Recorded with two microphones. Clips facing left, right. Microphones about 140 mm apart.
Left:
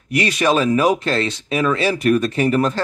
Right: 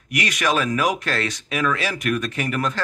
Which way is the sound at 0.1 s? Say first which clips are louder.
Left 5 dB; 30° left (ahead or behind).